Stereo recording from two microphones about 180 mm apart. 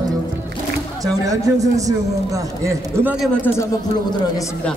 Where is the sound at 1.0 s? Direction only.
20° right (ahead or behind).